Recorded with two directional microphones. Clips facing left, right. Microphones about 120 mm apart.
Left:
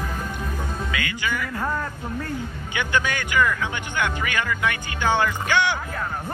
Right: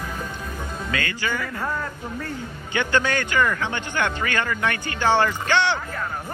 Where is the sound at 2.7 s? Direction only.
15° left (ahead or behind).